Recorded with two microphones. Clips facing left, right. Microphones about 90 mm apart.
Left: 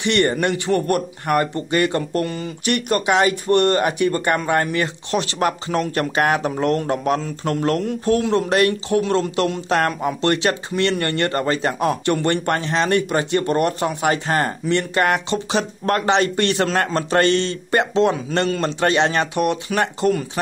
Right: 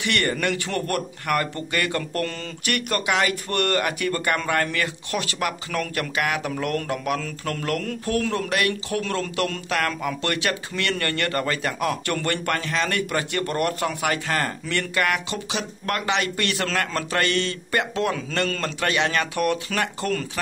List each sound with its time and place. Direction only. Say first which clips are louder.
0.0 s speech: left 6 dB; 25° left (ahead or behind)